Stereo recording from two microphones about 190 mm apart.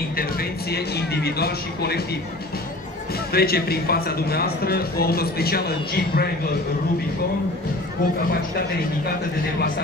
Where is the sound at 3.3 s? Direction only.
55° left (ahead or behind).